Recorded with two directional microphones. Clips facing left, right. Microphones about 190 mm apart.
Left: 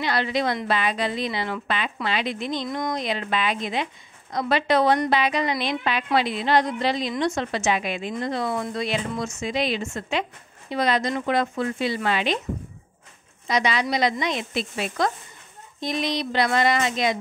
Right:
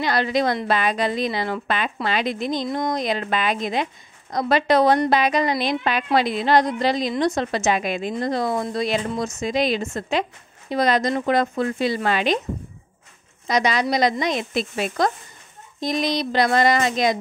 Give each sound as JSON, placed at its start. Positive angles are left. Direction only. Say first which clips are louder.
{"t": 0.0, "sound": "a woman's voice", "louder": "right 3 dB", "side_deg": -45}
{"t": 13.5, "sound": "a woman's voice", "louder": "right 3 dB", "side_deg": -40}